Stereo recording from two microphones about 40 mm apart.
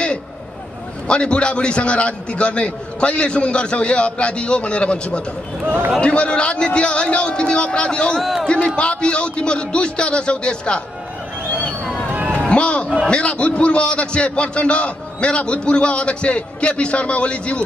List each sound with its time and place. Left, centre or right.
1.0 s a man's voice: left
8.2 s a man's voice: centre
8.5 s a man's voice: left
12.1 s a sound: right
12.4 s a sound: left
13.1 s a man's voice: left